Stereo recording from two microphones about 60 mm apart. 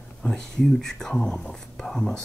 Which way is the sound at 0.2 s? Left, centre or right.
Centre.